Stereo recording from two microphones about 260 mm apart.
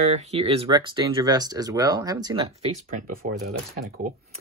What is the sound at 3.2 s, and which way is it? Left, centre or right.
Speech, right.